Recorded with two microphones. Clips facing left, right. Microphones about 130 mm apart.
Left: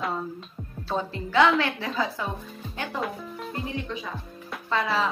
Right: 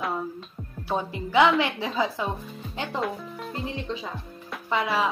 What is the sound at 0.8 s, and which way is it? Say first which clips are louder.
Speech: right 1 dB; 15° right (ahead or behind).